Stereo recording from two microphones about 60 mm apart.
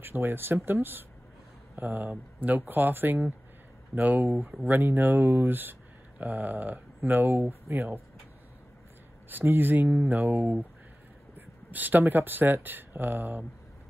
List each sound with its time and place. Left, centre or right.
0.0 s speech: right
9.3 s speech: right